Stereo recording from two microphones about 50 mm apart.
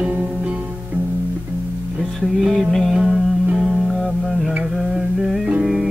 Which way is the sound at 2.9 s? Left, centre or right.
Centre.